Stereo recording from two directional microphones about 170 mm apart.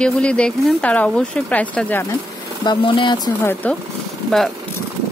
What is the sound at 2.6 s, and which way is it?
Speech, 30° left (ahead or behind).